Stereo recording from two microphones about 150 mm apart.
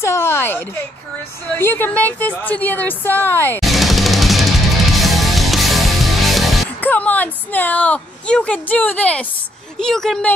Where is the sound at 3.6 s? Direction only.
Centre (ahead or behind).